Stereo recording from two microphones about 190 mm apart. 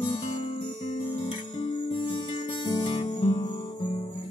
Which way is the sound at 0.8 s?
35° left (ahead or behind).